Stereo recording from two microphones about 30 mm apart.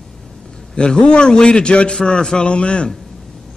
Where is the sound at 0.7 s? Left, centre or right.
Left.